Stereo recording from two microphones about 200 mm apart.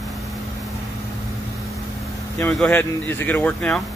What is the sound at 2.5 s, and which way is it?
Speech, 10° left (ahead or behind).